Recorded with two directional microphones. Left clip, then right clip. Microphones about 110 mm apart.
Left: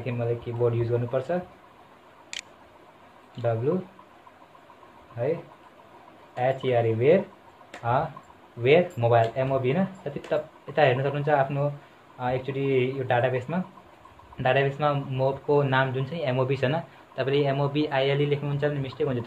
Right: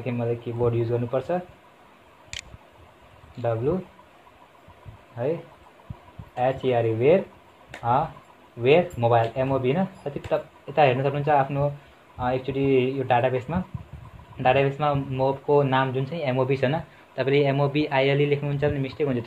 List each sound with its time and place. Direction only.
0.0 s speech: 25° right (ahead or behind)
2.3 s a sound: centre (ahead or behind)
6.3 s speech: 30° right (ahead or behind)
8.6 s speech: 30° right (ahead or behind); by 19.2 s 50° right (ahead or behind)